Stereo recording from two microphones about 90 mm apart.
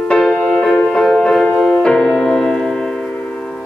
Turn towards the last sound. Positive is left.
turn(degrees=15)  # may be behind; listen again after turning